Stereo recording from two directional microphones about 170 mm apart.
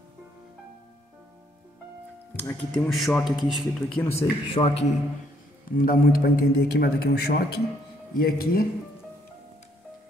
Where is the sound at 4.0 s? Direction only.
10° left (ahead or behind).